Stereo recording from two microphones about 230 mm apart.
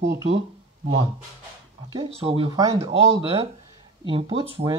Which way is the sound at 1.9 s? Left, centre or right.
Right.